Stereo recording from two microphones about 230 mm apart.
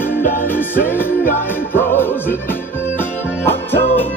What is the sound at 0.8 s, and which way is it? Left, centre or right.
Music, centre.